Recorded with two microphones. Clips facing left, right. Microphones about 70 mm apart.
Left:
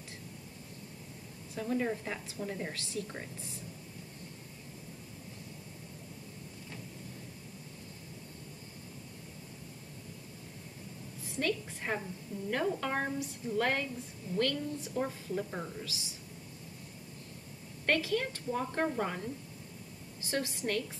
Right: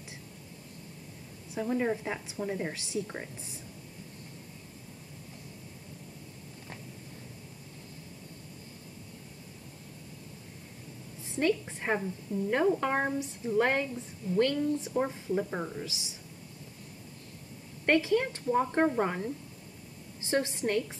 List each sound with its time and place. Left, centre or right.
1.5 s a woman's voice: centre
11.3 s a woman's voice: right
17.8 s a woman's voice: right